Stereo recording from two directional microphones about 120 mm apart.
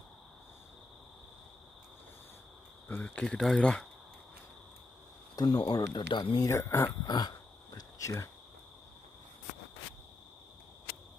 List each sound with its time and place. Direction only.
2.9 s speech: 10° left (ahead or behind)
5.3 s speech: 35° left (ahead or behind)
6.4 s speech: 25° left (ahead or behind)